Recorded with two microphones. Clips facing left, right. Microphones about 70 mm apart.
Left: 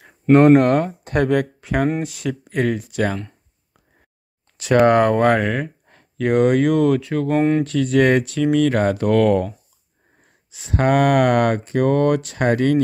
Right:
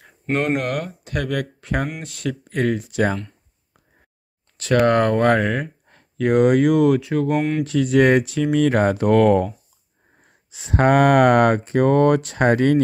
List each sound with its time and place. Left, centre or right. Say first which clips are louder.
0.5 s speech: left 9 dB; left
1.6 s speech: left 5 dB; centre
4.8 s speech: left 2 dB; centre
7.3 s speech: left 4 dB; left
7.6 s speech: even; centre
10.5 s speech: right 1 dB; right